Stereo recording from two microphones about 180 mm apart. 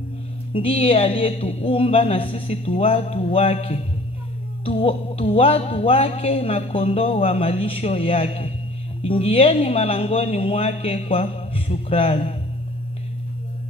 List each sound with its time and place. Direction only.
0.5 s speech: 30° left (ahead or behind)